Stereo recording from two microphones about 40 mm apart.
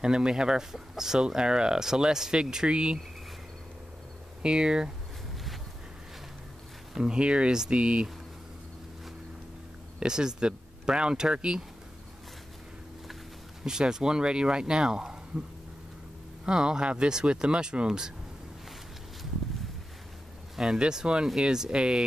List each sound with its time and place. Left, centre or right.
0.0 s speech: right
4.4 s speech: right
7.0 s speech: right
9.9 s speech: centre
13.7 s speech: centre
16.4 s speech: centre
20.5 s speech: centre
20.8 s speech: right